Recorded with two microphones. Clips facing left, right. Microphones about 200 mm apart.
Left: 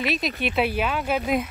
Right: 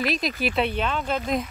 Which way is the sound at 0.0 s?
Centre (ahead or behind).